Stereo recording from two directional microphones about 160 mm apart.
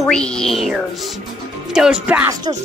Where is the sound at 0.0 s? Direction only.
5° left (ahead or behind).